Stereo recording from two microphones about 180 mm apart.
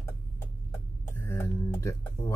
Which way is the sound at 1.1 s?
15° left (ahead or behind).